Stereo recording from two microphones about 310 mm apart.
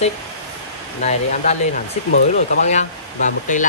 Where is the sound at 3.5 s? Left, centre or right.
Left.